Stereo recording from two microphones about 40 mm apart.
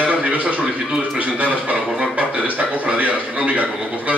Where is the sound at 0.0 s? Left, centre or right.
Right.